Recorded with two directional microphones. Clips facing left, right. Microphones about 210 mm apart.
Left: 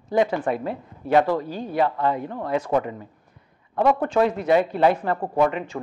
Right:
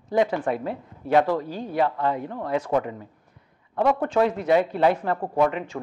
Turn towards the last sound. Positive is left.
turn(degrees=10)  # may be behind; listen again after turning